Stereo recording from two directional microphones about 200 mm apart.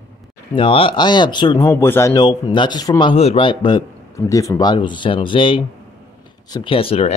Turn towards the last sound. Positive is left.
turn(degrees=30)  # may be behind; listen again after turning